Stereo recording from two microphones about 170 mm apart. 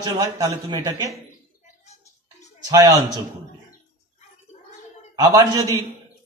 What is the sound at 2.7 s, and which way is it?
Speech, 20° right (ahead or behind).